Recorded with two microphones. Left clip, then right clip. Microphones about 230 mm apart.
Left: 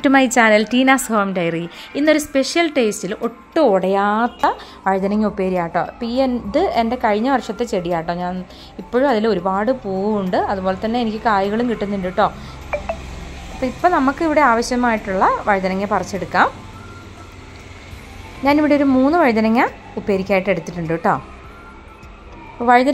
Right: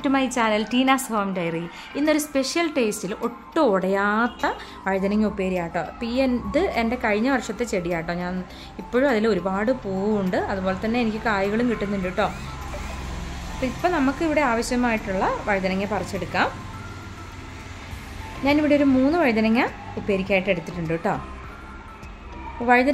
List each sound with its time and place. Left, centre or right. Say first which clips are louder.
0.0 s a woman's voice: left 9 dB; left
13.6 s a woman's voice: left 7 dB; centre
18.4 s a woman's voice: left 4 dB; centre
22.6 s a woman's voice: left 5 dB; centre